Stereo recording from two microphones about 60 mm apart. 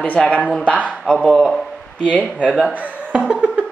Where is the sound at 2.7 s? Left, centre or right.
Right.